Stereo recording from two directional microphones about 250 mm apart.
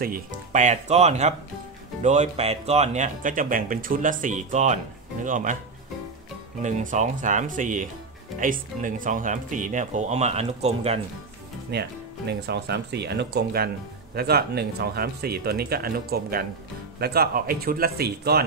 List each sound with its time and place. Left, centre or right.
0.5 s speech: right
6.6 s speech: right
11.7 s speech: right